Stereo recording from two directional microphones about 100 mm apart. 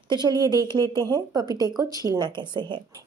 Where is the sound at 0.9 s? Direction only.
45° right (ahead or behind).